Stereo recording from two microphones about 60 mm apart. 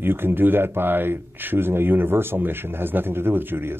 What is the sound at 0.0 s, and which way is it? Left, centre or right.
Speech, right.